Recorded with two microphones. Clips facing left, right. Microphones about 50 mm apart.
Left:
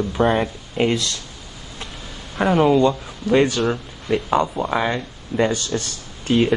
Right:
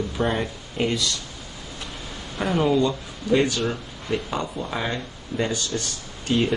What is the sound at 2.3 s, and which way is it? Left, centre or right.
Speech, left.